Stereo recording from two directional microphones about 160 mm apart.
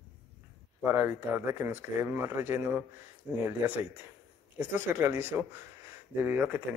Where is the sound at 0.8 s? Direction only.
10° right (ahead or behind).